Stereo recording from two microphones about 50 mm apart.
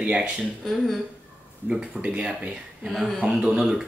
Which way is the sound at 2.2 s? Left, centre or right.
Centre.